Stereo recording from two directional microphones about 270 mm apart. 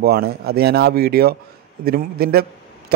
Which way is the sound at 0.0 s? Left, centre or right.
Right.